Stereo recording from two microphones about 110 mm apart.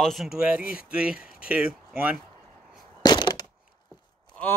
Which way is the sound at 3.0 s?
40° left (ahead or behind).